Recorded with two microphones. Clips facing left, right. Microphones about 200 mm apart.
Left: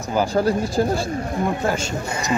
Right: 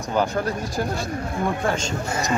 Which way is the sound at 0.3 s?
30° left (ahead or behind).